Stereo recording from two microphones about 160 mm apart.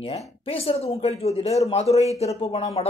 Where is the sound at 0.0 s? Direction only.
35° left (ahead or behind).